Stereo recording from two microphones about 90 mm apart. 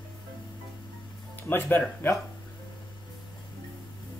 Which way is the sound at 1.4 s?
25° left (ahead or behind).